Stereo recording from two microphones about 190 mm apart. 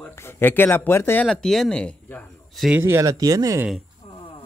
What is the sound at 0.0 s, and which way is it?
Speech, 15° left (ahead or behind).